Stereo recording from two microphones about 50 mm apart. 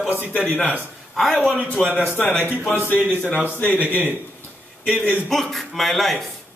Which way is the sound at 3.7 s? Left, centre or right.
Right.